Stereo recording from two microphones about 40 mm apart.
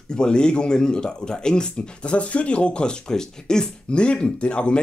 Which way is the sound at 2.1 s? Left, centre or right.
Left.